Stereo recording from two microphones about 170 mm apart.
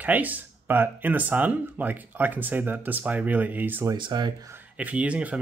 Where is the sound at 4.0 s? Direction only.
25° right (ahead or behind).